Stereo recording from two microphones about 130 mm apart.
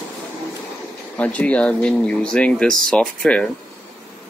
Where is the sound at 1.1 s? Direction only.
10° left (ahead or behind).